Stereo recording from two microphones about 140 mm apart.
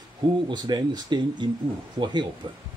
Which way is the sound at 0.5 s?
30° right (ahead or behind).